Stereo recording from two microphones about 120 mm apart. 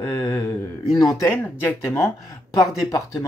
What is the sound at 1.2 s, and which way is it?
Speech, 20° left (ahead or behind).